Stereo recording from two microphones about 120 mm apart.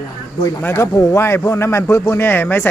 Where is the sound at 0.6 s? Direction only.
20° left (ahead or behind).